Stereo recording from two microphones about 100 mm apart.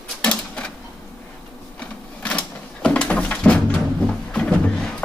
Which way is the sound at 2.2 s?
10° left (ahead or behind).